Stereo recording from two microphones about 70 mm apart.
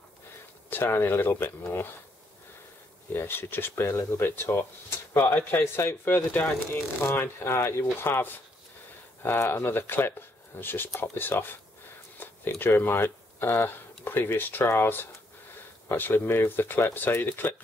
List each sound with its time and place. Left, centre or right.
0.7 s speech: left
3.1 s speech: left